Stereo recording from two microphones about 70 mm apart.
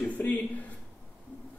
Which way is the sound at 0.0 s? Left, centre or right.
Left.